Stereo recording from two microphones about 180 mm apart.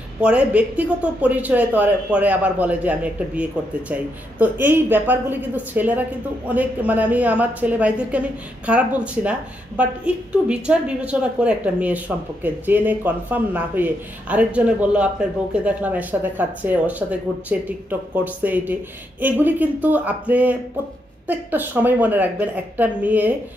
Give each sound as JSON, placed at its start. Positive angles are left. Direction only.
{"t": 0.2, "sound": "speech", "side_deg": -5}